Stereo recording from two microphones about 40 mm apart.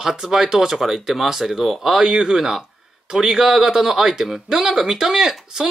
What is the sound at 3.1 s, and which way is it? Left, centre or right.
Speech, centre.